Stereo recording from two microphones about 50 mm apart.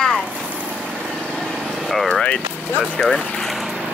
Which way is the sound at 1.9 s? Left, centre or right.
Centre.